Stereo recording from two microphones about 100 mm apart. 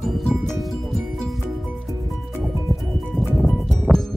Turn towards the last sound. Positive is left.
turn(degrees=-5)  # may be behind; listen again after turning